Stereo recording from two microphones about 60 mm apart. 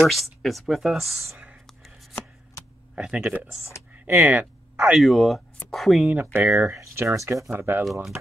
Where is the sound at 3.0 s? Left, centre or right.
Centre.